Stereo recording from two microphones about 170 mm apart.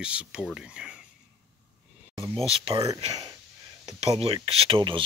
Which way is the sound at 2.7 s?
20° right (ahead or behind).